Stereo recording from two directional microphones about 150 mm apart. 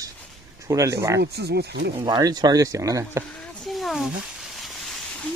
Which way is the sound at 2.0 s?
25° right (ahead or behind).